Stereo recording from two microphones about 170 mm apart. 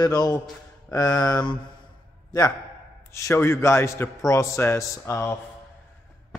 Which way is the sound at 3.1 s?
15° left (ahead or behind).